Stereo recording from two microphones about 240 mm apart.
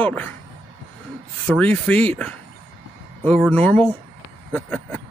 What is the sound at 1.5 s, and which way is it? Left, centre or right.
Speech, centre.